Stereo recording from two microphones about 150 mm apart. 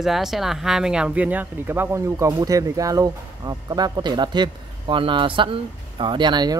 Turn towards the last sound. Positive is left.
turn(degrees=-30)  # may be behind; listen again after turning